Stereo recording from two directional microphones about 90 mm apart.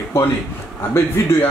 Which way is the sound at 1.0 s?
30° left (ahead or behind).